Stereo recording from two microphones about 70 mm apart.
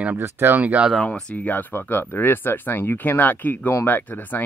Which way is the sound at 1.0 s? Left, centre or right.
Centre.